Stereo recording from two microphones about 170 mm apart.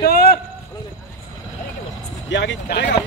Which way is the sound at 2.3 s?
90° left.